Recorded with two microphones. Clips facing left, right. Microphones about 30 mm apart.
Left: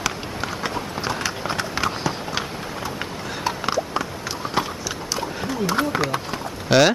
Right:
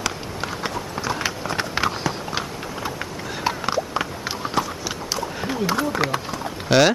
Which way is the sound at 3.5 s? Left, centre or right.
Right.